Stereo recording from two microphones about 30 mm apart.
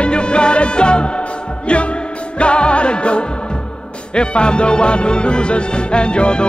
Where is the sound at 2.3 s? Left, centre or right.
Left.